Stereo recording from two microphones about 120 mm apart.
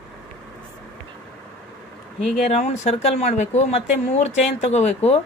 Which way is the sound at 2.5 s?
70° left (ahead or behind).